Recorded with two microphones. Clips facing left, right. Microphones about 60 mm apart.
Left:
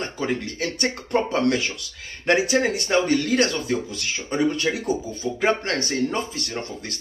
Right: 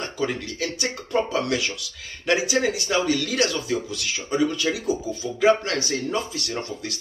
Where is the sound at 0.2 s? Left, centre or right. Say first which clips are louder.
Even; left.